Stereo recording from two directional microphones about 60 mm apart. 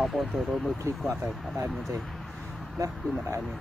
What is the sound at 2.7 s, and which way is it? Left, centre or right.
Speech, right.